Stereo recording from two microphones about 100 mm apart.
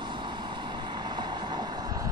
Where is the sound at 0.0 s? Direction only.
50° right (ahead or behind).